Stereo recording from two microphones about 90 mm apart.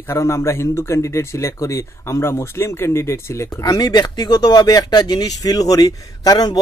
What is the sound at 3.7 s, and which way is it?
Speech, 50° left (ahead or behind).